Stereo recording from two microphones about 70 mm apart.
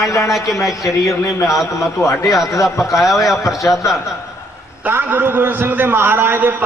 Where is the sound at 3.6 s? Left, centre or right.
Left.